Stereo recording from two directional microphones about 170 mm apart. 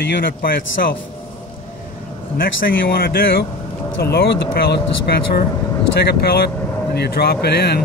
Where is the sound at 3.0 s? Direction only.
60° left (ahead or behind).